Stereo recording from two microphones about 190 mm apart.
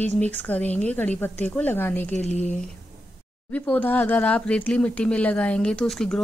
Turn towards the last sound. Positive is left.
turn(degrees=5)  # may be behind; listen again after turning